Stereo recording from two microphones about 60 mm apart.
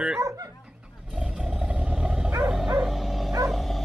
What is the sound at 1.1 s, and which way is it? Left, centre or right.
Roaring cats, centre.